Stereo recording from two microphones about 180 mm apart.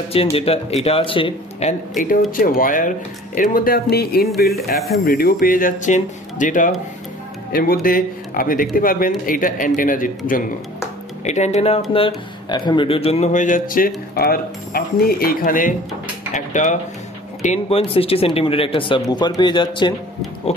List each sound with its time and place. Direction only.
0.1 s speech: 35° left (ahead or behind); by 4.3 s 60° left (ahead or behind)
4.7 s speech: centre (ahead or behind)
5.0 s speech: 55° left (ahead or behind)
11.2 s speech: 40° left (ahead or behind)
12.4 s speech: 25° left (ahead or behind)